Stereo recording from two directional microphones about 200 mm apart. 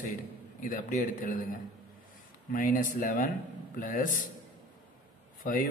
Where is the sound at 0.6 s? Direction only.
40° left (ahead or behind).